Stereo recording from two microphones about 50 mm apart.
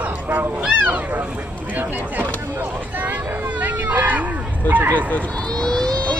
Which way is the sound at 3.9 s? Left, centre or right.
Right.